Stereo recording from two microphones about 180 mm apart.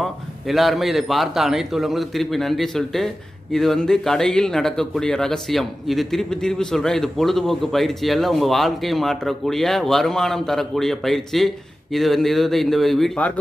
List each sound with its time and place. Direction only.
0.0 s speech: centre (ahead or behind)